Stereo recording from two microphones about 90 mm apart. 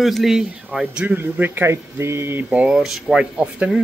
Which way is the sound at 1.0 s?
20° right (ahead or behind).